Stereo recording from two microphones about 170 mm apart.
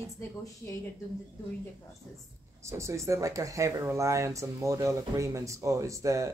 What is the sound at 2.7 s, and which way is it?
Speech, 15° right (ahead or behind).